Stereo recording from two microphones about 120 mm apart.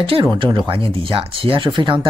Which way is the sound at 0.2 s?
40° right (ahead or behind).